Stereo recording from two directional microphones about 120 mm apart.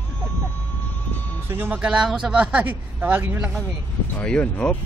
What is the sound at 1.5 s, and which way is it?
A man's voice, 15° right (ahead or behind).